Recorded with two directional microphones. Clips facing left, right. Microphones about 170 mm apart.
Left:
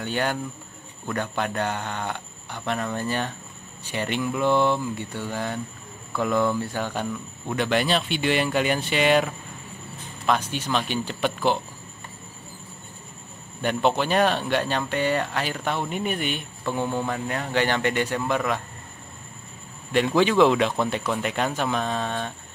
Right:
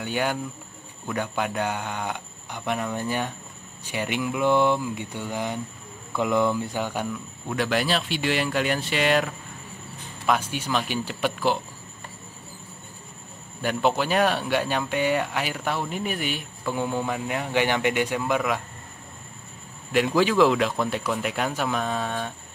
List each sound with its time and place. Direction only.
0.0 s speech: 10° right (ahead or behind)
7.4 s speech: centre (ahead or behind)
13.8 s speech: 5° right (ahead or behind)
19.9 s speech: 5° right (ahead or behind)